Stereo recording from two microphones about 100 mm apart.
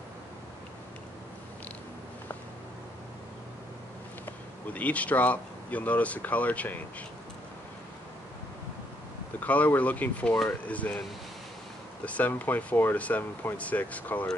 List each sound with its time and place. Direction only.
4.3 s speech: 15° left (ahead or behind)
9.4 s speech: 15° left (ahead or behind)
12.0 s speech: 15° left (ahead or behind)